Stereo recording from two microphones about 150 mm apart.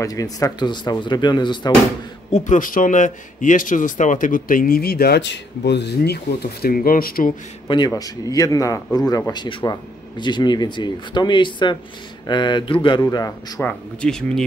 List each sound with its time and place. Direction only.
0.0 s a man's voice: 25° left (ahead or behind)
2.3 s a man's voice: 55° left (ahead or behind); by 7.3 s 75° left (ahead or behind)
7.6 s a man's voice: 30° left (ahead or behind)
13.0 s speech: 20° left (ahead or behind); by 14.4 s 5° left (ahead or behind)